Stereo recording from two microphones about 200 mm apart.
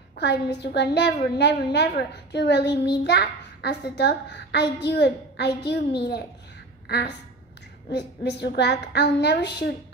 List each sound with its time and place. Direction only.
0.1 s a woman's voice: 55° left (ahead or behind)
7.9 s a woman's voice: 55° left (ahead or behind)